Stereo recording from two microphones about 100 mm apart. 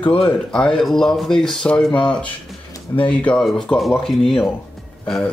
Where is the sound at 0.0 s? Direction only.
65° left (ahead or behind).